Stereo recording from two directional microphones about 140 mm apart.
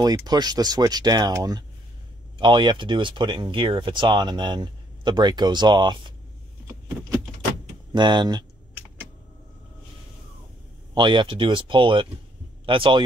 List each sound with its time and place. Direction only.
0.0 s speech: 30° right (ahead or behind)
7.9 s speech: 35° right (ahead or behind)
11.0 s speech: 35° right (ahead or behind)